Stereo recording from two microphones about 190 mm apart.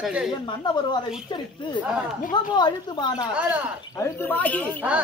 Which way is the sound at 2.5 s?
25° left (ahead or behind).